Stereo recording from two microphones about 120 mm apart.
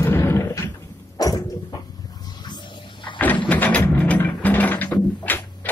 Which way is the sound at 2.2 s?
40° left (ahead or behind).